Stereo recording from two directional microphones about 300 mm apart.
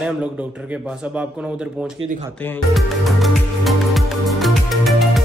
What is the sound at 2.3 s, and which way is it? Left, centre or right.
Music, centre.